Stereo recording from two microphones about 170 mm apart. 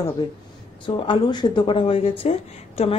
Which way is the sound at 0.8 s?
30° left (ahead or behind).